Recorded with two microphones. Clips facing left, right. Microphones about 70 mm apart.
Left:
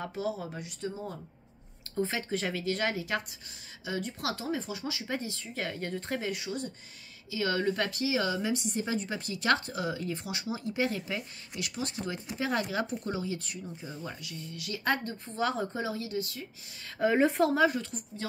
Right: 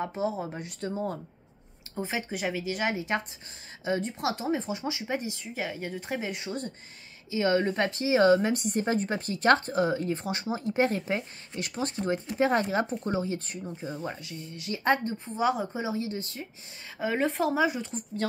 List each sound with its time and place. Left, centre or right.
0.0 s speech: right
0.6 s speech: right
2.0 s speech: centre
6.3 s a woman's voice: right; by 15.9 s centre
15.9 s a woman's voice: right
17.0 s a woman's voice: centre
17.6 s speech: centre